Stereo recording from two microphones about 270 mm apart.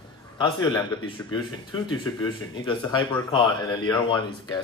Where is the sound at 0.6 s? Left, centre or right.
Centre.